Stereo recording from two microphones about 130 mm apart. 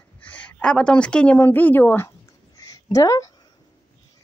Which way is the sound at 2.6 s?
30° left (ahead or behind).